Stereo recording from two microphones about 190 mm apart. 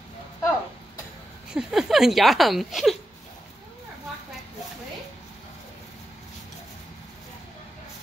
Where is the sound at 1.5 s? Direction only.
Centre (ahead or behind).